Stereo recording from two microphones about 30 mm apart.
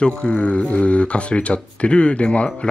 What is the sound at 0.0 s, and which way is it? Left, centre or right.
Speech, left.